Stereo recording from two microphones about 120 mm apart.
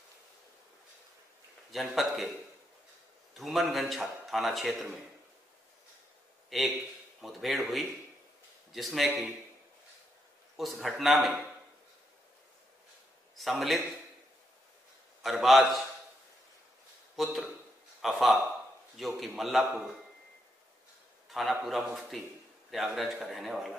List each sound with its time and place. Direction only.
1.7 s a man's voice: centre (ahead or behind)
3.3 s a man's voice: centre (ahead or behind)
6.5 s a man's voice: centre (ahead or behind)
10.6 s a man's voice: centre (ahead or behind)
13.4 s a man's voice: centre (ahead or behind)
15.2 s a man's voice: centre (ahead or behind)
17.1 s a man's voice: centre (ahead or behind)
21.3 s a man's voice: centre (ahead or behind)